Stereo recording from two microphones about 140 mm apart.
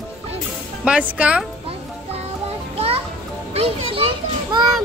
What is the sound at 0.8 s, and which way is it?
Speech, 10° right (ahead or behind).